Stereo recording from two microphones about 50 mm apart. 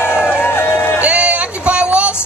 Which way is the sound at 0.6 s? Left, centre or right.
Left.